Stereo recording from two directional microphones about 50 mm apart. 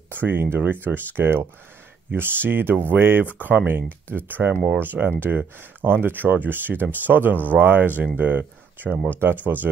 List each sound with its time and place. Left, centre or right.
0.1 s speech: right